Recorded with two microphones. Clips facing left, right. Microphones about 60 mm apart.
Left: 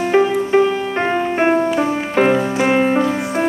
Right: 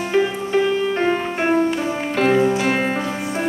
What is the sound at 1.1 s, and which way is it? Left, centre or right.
Music, centre.